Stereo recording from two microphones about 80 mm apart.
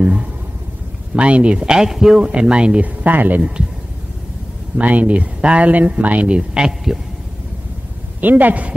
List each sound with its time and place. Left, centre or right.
0.0 s a sound: centre
1.1 s speech: centre
4.7 s speech: centre
8.2 s speech: right